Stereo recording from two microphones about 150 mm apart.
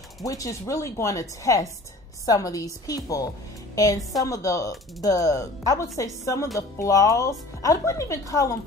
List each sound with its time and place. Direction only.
0.2 s speech: 20° left (ahead or behind)